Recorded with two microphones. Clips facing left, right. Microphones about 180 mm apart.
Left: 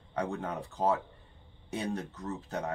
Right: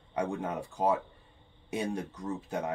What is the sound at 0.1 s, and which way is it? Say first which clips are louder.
Speech: right 2 dB; 15° right (ahead or behind).